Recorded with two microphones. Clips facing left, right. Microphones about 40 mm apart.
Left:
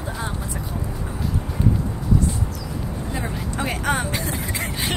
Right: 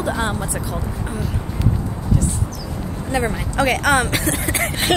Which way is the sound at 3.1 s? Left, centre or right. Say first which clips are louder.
Right 10 dB; right.